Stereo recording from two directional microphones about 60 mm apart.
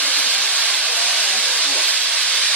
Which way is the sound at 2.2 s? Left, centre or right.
Centre.